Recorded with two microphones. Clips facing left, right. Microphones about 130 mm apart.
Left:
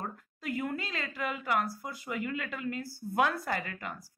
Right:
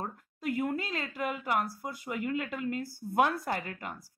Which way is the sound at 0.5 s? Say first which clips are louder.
Right 3 dB; 10° right (ahead or behind).